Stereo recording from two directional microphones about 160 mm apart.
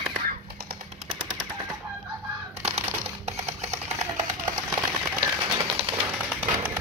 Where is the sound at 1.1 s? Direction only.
30° right (ahead or behind).